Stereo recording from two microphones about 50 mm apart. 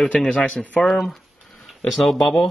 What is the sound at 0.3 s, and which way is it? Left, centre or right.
Speech, left.